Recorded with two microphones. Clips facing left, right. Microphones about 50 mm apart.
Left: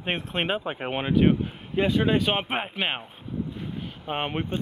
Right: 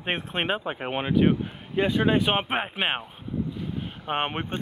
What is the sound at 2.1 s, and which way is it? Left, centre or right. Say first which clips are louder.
Speech: right 1 dB; centre.